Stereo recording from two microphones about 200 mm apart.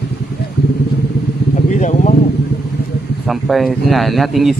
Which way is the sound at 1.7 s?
35° left (ahead or behind).